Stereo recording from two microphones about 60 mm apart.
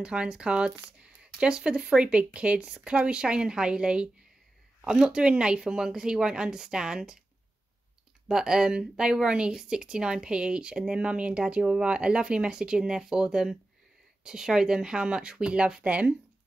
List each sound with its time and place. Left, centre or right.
0.0 s speech: centre
8.3 s speech: centre